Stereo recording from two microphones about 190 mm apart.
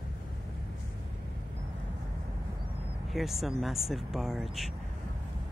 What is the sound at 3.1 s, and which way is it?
Speech, centre (ahead or behind).